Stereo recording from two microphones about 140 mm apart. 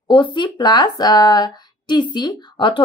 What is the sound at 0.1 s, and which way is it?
Speech, 35° left (ahead or behind).